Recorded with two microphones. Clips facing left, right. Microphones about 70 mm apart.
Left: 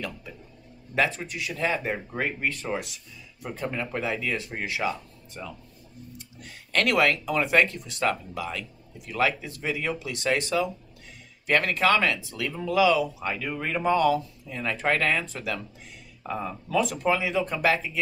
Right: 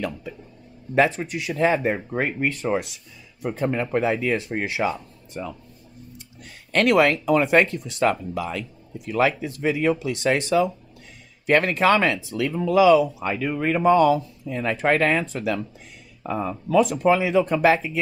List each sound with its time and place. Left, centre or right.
0.9 s speech: right
6.7 s speech: right